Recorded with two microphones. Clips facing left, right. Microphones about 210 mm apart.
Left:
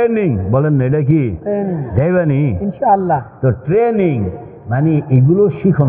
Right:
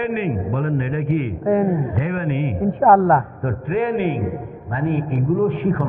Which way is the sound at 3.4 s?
50° left (ahead or behind).